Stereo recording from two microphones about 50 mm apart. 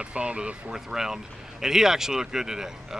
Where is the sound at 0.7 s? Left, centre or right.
Centre.